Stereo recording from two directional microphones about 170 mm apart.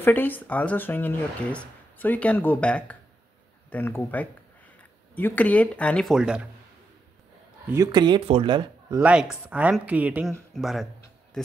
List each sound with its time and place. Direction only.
0.0 s speech: 10° left (ahead or behind)
7.7 s speech: 20° right (ahead or behind)
9.0 s speech: 5° right (ahead or behind)